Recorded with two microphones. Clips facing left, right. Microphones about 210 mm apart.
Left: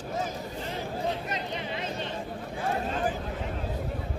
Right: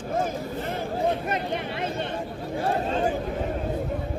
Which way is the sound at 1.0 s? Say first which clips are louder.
Right 8 dB; 55° right (ahead or behind).